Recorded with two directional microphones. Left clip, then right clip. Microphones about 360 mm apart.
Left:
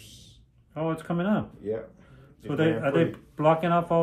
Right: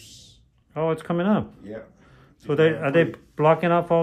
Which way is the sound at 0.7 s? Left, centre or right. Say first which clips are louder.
Right 6 dB; right.